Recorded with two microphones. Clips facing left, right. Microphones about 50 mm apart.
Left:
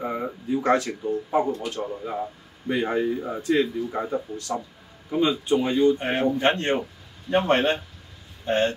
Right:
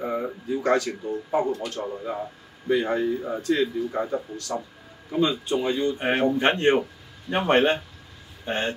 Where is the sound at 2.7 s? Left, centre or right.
Centre.